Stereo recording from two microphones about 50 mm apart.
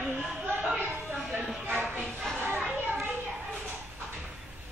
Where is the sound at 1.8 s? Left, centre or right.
Centre.